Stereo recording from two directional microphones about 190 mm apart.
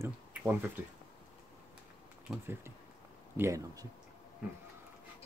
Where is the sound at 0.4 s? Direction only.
10° right (ahead or behind).